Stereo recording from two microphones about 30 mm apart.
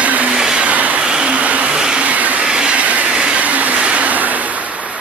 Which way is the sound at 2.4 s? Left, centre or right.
Right.